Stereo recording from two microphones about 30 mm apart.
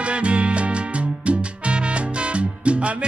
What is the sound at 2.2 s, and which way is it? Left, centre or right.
Salsa music, right.